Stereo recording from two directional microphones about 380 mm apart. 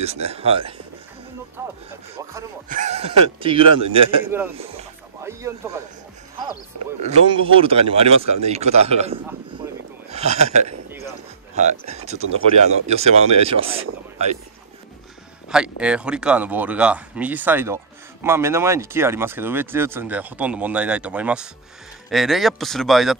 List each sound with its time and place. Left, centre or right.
0.0 s speech: centre
2.7 s a man's voice: centre
7.0 s speech: centre
9.6 s a sound: centre
10.1 s speech: centre
15.5 s speech: centre